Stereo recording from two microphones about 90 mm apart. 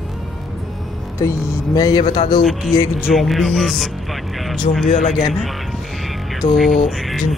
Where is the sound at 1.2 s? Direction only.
35° left (ahead or behind).